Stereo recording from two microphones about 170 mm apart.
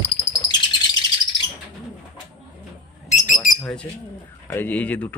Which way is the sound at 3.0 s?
50° left (ahead or behind).